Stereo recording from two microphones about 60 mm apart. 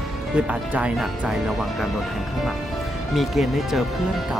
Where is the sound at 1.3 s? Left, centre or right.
Centre.